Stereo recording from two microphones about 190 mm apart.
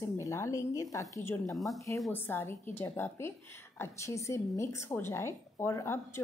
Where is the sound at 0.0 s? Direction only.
15° left (ahead or behind).